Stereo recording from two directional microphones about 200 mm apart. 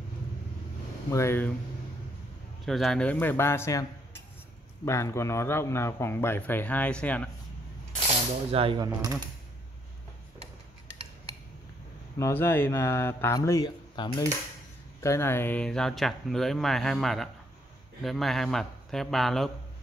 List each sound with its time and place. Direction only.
1.1 s a man's voice: 10° left (ahead or behind)
2.6 s a man's voice: centre (ahead or behind)
4.8 s a man's voice: 15° left (ahead or behind)
8.5 s speech: 30° right (ahead or behind)
12.2 s a man's voice: 10° left (ahead or behind)